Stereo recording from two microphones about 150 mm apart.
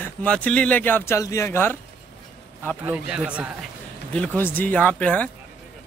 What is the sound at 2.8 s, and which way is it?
Speech, 10° right (ahead or behind).